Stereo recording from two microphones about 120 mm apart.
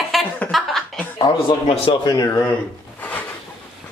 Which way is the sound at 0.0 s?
Centre (ahead or behind).